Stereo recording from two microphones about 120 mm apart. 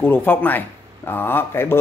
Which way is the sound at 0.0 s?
15° left (ahead or behind).